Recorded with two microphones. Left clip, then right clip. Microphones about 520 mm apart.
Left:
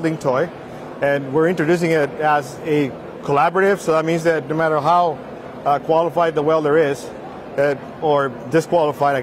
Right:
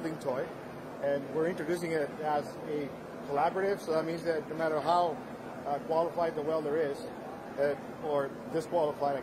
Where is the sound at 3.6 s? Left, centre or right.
Left.